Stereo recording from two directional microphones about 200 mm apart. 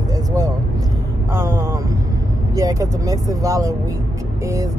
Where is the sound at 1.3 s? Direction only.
15° right (ahead or behind).